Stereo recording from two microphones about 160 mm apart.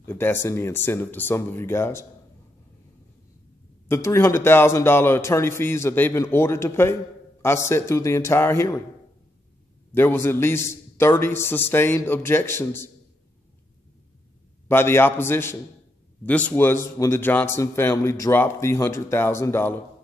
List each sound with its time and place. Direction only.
0.0 s a man's voice: 15° left (ahead or behind)
3.9 s a man's voice: 15° left (ahead or behind)
9.9 s a man's voice: 15° left (ahead or behind)
14.7 s a man's voice: 15° left (ahead or behind)